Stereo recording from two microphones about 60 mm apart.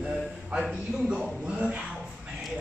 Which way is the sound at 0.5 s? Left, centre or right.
Centre.